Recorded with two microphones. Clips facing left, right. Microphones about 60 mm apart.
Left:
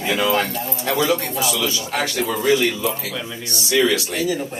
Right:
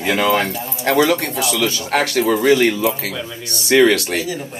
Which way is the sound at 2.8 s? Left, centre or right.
Right.